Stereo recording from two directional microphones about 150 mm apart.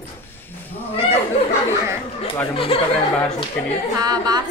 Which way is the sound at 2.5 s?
40° left (ahead or behind).